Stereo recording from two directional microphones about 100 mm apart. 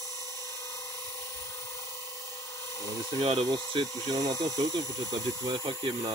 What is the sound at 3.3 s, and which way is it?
Speech, 45° right (ahead or behind).